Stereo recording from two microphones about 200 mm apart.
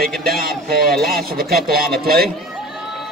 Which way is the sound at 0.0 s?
50° right (ahead or behind).